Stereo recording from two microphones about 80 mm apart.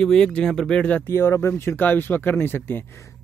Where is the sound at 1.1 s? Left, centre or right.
Left.